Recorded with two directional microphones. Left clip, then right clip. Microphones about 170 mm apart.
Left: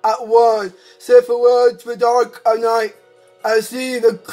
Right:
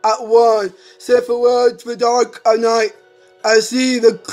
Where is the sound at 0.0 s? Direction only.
25° right (ahead or behind).